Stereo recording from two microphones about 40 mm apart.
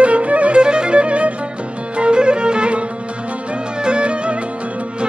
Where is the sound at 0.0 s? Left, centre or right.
Right.